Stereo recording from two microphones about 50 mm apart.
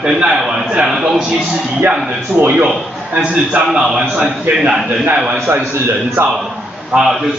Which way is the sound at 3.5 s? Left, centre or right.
Centre.